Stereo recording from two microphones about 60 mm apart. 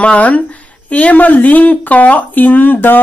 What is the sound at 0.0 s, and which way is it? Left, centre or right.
A woman's voice, left.